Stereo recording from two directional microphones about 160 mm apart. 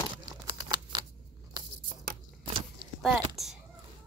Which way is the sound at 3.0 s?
Centre (ahead or behind).